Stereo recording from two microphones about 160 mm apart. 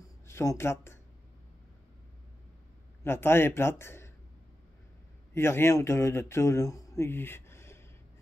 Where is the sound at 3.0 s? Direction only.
15° left (ahead or behind).